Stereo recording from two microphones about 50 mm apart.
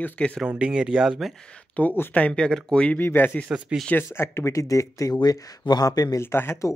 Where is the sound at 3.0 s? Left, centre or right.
Left.